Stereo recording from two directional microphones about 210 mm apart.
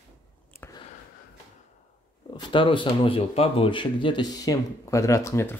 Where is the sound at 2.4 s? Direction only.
20° left (ahead or behind).